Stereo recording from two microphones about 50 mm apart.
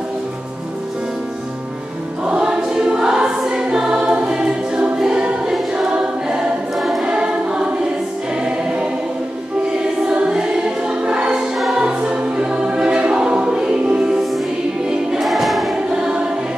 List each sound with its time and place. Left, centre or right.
2.2 s choir: centre
10.3 s music: centre
11.8 s choir: centre
15.0 s choir: centre
15.7 s choir: centre